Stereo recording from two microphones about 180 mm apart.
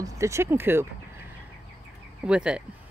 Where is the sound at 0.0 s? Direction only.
15° right (ahead or behind).